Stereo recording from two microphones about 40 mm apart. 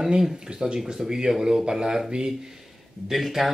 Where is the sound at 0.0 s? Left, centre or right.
Centre.